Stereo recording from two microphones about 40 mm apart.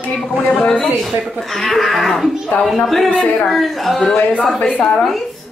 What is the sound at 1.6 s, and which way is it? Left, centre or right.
A woman's voice, centre.